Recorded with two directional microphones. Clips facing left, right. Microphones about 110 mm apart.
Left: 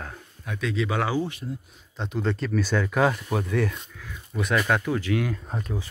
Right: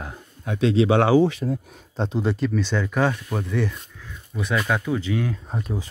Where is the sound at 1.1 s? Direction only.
90° right.